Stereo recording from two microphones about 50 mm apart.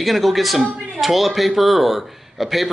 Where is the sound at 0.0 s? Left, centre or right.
Centre.